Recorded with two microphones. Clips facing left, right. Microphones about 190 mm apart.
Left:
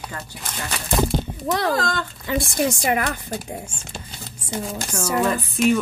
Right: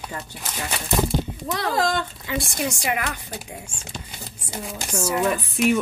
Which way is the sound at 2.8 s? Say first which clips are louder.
Left 4 dB; 50° left (ahead or behind).